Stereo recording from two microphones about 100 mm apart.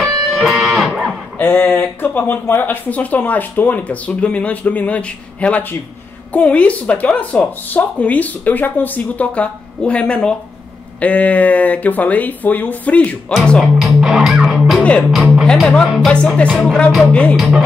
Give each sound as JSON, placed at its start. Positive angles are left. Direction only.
{"t": 0.0, "sound": "music", "side_deg": 0}
{"t": 1.4, "sound": "speech", "side_deg": 20}
{"t": 13.3, "sound": "speech", "side_deg": 5}
{"t": 13.7, "sound": "music", "side_deg": -5}
{"t": 14.8, "sound": "music", "side_deg": 10}
{"t": 15.4, "sound": "speech", "side_deg": 5}
{"t": 17.4, "sound": "speech", "side_deg": 0}